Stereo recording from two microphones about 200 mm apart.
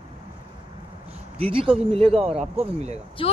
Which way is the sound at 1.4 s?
25° right (ahead or behind).